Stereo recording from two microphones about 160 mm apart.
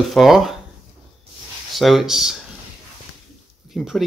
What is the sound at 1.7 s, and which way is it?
Speech, centre (ahead or behind).